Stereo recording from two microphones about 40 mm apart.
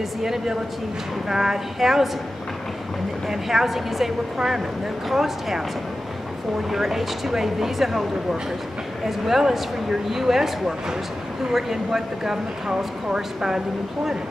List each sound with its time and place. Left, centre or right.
0.2 s speech: centre
3.3 s speech: centre
6.7 s speech: centre